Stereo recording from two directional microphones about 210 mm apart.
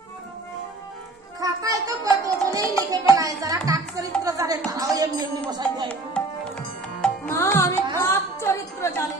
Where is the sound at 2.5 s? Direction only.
15° right (ahead or behind).